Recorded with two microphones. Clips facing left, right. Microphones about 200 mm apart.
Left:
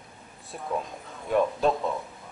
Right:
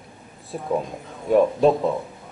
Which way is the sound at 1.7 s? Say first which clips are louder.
Right 7 dB; 30° right (ahead or behind).